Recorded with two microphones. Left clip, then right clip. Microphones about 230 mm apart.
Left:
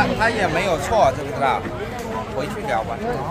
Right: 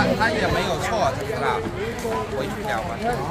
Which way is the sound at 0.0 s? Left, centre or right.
Left.